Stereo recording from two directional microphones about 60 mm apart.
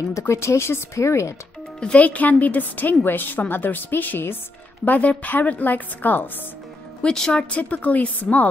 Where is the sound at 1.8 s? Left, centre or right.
Centre.